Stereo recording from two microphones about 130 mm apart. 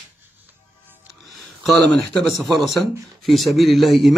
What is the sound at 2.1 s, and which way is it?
Speech, centre (ahead or behind).